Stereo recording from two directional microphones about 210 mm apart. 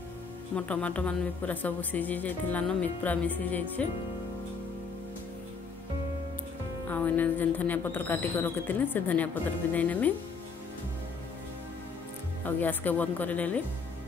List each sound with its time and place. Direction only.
0.6 s a woman's voice: 5° left (ahead or behind)
6.9 s a woman's voice: 10° left (ahead or behind)
12.4 s a woman's voice: 10° left (ahead or behind)